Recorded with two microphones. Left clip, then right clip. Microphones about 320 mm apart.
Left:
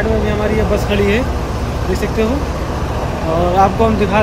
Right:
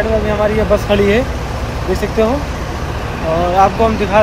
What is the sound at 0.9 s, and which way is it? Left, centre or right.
Speech, centre.